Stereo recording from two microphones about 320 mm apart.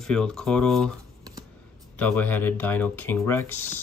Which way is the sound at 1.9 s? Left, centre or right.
Centre.